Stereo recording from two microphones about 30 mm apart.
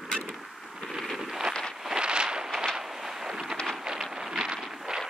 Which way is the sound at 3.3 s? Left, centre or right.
Right.